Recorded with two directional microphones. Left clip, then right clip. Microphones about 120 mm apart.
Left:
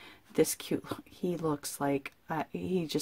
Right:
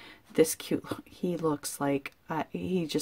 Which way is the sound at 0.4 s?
Centre (ahead or behind).